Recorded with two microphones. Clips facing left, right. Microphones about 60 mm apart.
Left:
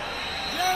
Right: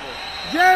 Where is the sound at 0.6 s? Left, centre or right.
Right.